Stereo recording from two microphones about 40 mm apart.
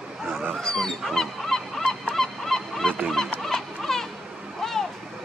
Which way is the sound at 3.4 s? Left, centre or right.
Centre.